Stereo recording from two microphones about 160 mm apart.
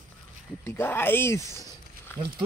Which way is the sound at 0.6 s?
15° left (ahead or behind).